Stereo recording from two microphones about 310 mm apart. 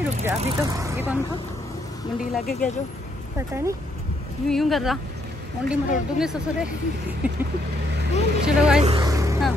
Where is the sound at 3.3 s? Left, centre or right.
Centre.